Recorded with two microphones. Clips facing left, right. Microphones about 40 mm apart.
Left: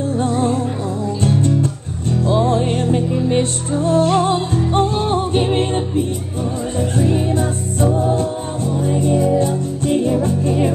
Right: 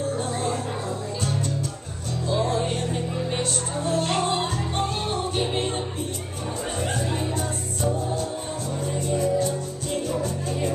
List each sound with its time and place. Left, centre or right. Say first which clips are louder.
1.2 s music: left 13 dB; left
7.0 s music: left 10 dB; left